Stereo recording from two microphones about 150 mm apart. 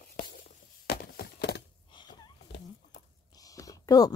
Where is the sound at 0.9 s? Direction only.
90° left.